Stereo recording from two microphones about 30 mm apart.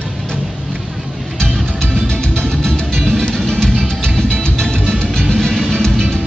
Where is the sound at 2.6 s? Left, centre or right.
Left.